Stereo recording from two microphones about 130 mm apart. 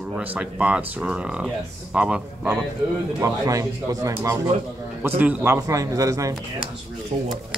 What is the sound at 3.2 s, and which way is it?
Speech, 25° right (ahead or behind).